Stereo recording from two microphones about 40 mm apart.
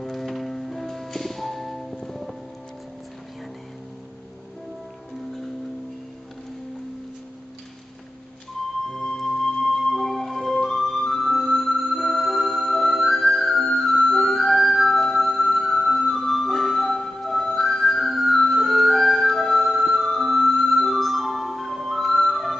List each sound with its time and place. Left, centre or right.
0.0 s music: centre
8.9 s music: centre